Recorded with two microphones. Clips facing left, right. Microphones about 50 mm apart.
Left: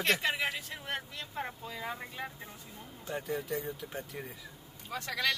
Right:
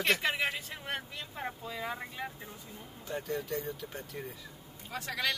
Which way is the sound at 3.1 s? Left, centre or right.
Centre.